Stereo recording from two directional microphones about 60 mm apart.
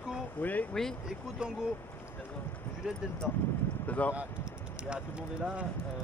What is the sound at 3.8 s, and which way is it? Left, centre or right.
Speech, left.